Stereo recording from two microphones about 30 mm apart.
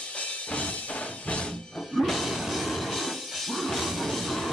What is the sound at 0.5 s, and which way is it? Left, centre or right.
Music, left.